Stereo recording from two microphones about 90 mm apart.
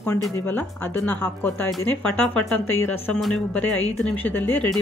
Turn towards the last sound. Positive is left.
turn(degrees=20)  # may be behind; listen again after turning